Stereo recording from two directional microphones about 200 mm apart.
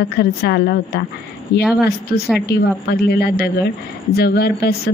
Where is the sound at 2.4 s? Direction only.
55° left (ahead or behind).